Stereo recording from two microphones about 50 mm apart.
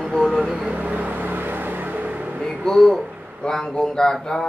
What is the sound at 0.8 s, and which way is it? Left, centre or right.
Vehicle, right.